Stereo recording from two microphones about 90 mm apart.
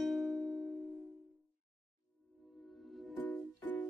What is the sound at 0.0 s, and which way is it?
Music, centre (ahead or behind).